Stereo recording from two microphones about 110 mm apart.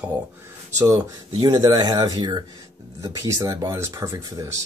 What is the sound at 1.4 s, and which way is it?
Speech, 35° right (ahead or behind).